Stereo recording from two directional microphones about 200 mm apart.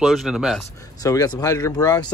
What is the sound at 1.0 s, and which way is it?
Speech, 20° left (ahead or behind).